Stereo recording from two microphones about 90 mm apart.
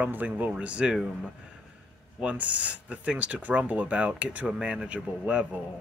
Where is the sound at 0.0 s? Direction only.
20° right (ahead or behind).